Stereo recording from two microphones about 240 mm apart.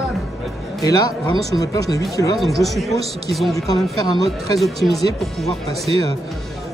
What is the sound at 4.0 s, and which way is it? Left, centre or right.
Speech, centre.